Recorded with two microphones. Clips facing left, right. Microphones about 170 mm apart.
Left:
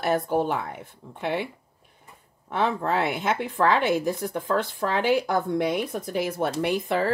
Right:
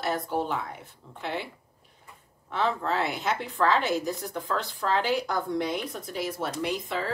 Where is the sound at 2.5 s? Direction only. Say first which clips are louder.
Left 3 dB; 55° left (ahead or behind).